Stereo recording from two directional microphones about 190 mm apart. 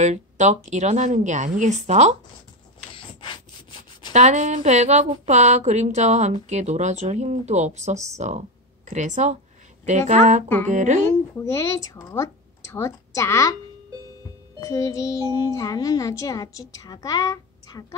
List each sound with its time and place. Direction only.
0.0 s a woman's voice: 40° right (ahead or behind)
4.1 s a woman's voice: 35° right (ahead or behind)
11.4 s speech: 15° left (ahead or behind)
14.6 s a child's voice: 15° left (ahead or behind)